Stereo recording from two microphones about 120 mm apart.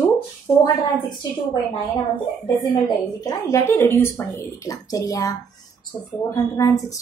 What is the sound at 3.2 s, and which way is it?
A woman's voice, 25° left (ahead or behind).